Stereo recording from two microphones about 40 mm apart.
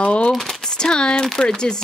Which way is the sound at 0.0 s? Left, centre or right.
Left.